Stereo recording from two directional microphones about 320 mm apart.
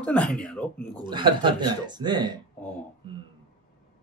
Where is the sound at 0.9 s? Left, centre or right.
Centre.